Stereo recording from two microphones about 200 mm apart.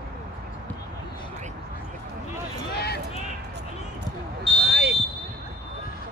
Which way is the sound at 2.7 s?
55° left (ahead or behind).